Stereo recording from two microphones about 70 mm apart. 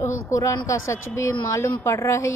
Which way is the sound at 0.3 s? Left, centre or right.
Left.